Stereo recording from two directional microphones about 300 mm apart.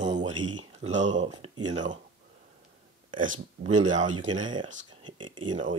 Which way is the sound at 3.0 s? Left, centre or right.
Right.